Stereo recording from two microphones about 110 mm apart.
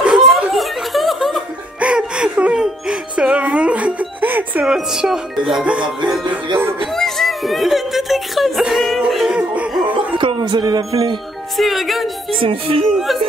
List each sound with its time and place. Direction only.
0.0 s snicker: 5° right (ahead or behind)
1.8 s music: 10° right (ahead or behind)
4.7 s speech: 5° right (ahead or behind)
6.0 s music: 5° right (ahead or behind)
9.9 s music: 45° right (ahead or behind)
11.5 s speech: centre (ahead or behind)
12.3 s music: 55° right (ahead or behind)
12.9 s speech: centre (ahead or behind)